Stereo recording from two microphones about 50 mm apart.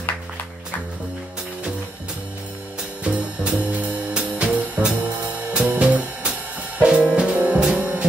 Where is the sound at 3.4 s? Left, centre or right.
Right.